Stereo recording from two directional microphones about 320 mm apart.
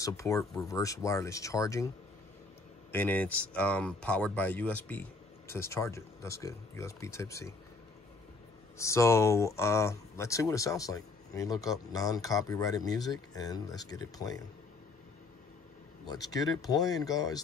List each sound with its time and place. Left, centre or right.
0.0 s speech: centre
2.9 s speech: centre
8.7 s speech: centre
16.1 s speech: centre